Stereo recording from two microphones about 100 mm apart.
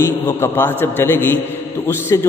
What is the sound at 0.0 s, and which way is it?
A man's voice, 25° left (ahead or behind).